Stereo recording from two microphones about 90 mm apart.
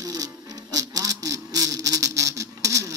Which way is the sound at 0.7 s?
40° right (ahead or behind).